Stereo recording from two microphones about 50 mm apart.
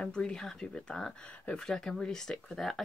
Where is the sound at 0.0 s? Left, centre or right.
Centre.